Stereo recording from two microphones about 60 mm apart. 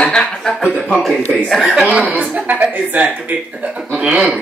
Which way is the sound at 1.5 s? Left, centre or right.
Centre.